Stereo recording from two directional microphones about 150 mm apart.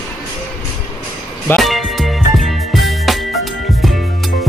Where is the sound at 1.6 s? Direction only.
Centre (ahead or behind).